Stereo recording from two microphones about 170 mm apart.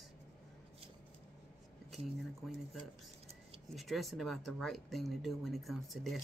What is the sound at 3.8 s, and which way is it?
Speech, centre (ahead or behind).